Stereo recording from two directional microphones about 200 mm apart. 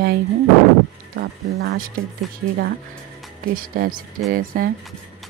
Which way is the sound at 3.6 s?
45° right (ahead or behind).